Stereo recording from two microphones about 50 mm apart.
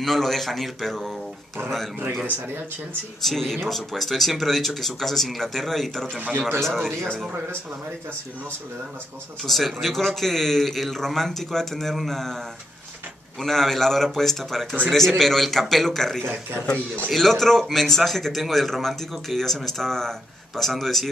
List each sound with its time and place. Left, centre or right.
0.0 s a man's voice: centre
3.3 s a man's voice: centre
6.1 s a man's voice: right
6.6 s a man's voice: centre
9.5 s a man's voice: centre
13.4 s a man's voice: centre
16.2 s speech: right
17.1 s a man's voice: centre